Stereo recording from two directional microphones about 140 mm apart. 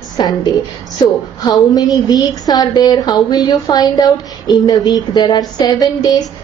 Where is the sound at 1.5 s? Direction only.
30° left (ahead or behind).